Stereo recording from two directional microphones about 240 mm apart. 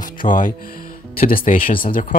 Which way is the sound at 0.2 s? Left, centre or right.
Left.